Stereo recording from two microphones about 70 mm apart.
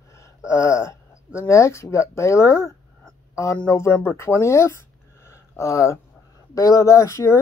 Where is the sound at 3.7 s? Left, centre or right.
Left.